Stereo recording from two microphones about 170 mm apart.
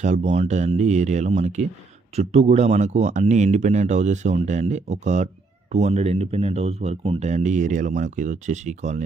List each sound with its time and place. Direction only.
0.0 s speech: 45° right (ahead or behind)